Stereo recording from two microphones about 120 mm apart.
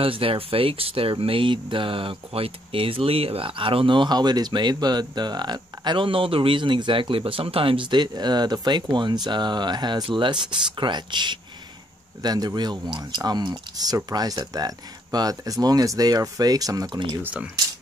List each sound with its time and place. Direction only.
0.0 s speech: 50° right (ahead or behind); by 17.0 s 30° right (ahead or behind)
17.2 s speech: 10° right (ahead or behind)